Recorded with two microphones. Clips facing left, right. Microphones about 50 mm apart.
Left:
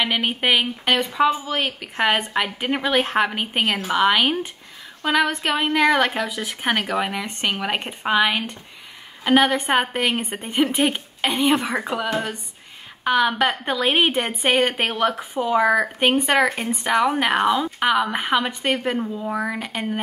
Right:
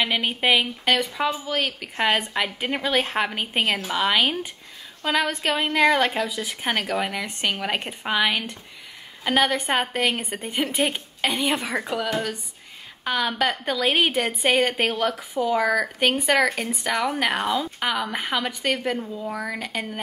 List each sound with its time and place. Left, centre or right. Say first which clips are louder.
0.0 s a woman's voice: left 1 dB; left
3.2 s a woman's voice: left 3 dB; centre